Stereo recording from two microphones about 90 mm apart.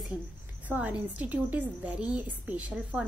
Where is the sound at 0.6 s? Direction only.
15° right (ahead or behind).